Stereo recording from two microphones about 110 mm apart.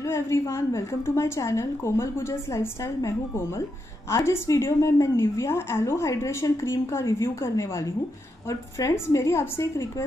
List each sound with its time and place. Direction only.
0.0 s a woman's voice: 25° left (ahead or behind)